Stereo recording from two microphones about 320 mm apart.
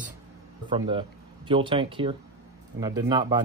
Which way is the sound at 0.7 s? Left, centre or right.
Centre.